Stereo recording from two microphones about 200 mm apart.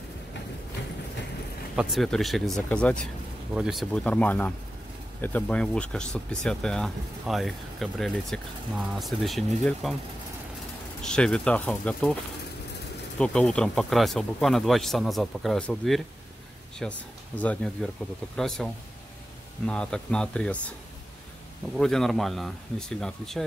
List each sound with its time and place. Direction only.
1.8 s speech: centre (ahead or behind)
11.0 s speech: 5° left (ahead or behind)
13.2 s speech: 5° left (ahead or behind)
21.7 s speech: centre (ahead or behind)